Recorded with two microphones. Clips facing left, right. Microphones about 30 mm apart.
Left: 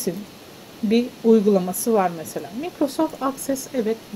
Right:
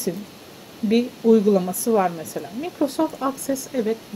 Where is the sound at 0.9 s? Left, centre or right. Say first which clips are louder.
Even; centre.